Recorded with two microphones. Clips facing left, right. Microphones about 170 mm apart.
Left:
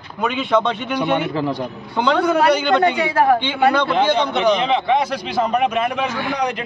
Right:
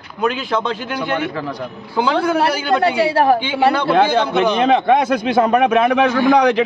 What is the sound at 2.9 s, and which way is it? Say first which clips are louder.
Speech: right 2 dB; 30° right (ahead or behind).